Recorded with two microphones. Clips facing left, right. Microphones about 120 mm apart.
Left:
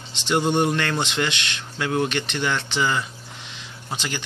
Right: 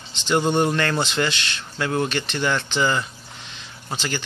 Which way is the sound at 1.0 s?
15° left (ahead or behind).